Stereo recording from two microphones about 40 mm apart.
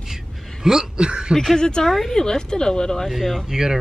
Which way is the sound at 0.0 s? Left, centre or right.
Centre.